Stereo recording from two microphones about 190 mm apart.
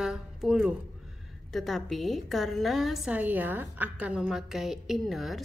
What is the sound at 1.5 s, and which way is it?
A woman's voice, centre (ahead or behind).